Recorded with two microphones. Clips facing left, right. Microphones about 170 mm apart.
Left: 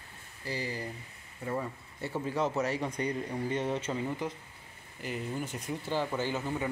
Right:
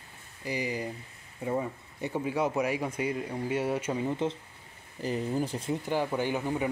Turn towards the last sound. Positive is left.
turn(degrees=-15)  # may be behind; listen again after turning